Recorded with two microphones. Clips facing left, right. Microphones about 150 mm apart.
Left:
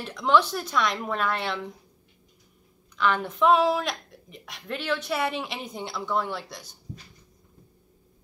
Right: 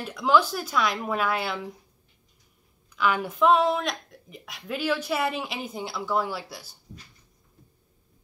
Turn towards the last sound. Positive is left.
turn(degrees=-5)  # may be behind; listen again after turning